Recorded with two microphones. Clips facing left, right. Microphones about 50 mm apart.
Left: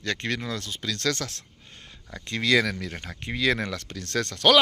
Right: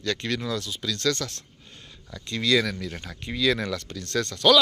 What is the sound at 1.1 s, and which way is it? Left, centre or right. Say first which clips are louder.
Speech: right 2 dB; left.